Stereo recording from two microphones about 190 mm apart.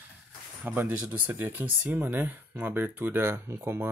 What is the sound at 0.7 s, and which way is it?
Speech, 10° right (ahead or behind).